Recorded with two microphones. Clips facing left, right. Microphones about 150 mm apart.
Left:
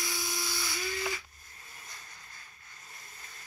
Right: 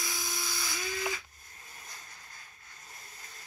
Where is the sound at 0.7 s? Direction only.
20° right (ahead or behind).